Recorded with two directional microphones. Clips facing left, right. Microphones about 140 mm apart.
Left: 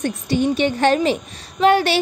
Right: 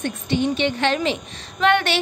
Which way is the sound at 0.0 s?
40° left (ahead or behind).